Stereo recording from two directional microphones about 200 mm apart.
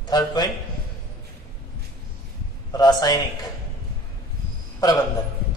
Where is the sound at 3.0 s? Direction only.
20° left (ahead or behind).